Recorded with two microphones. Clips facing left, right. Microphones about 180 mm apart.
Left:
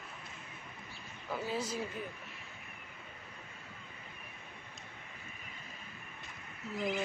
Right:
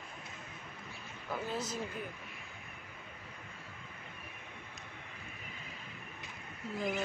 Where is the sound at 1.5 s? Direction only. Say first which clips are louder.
Left 3 dB; 10° left (ahead or behind).